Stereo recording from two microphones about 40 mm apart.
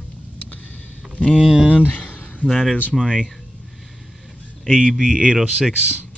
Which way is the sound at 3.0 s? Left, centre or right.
Centre.